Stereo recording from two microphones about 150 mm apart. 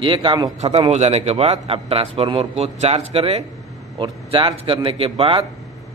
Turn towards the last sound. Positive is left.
turn(degrees=-40)  # may be behind; listen again after turning